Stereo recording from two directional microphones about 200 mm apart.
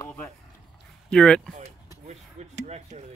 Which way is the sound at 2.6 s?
30° right (ahead or behind).